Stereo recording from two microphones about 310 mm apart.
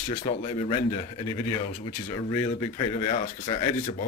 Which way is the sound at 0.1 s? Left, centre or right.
Centre.